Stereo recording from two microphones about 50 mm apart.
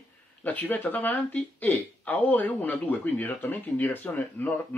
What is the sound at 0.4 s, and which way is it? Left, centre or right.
Speech, left.